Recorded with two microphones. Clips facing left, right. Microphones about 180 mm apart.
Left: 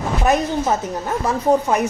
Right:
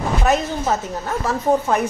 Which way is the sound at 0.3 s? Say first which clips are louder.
Left 2 dB; 15° left (ahead or behind).